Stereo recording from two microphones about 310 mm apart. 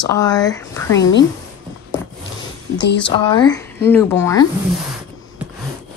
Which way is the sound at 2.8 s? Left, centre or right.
Left.